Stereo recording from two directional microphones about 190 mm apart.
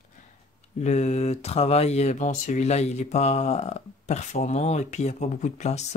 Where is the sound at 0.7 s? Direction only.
35° left (ahead or behind).